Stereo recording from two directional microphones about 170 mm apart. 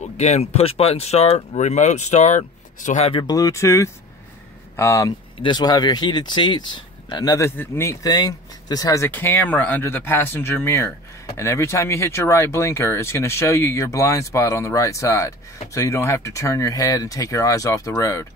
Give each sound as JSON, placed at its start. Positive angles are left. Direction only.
{"t": 0.0, "sound": "speech", "side_deg": 40}
{"t": 3.1, "sound": "speech", "side_deg": 25}